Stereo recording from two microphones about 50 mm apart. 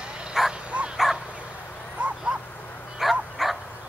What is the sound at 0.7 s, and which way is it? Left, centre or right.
Dog, right.